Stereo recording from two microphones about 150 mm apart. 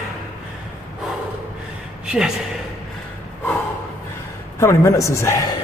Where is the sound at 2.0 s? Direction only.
5° right (ahead or behind).